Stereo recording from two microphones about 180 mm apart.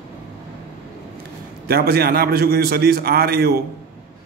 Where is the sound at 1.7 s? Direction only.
60° right (ahead or behind).